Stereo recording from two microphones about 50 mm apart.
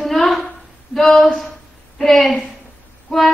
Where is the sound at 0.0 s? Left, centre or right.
Centre.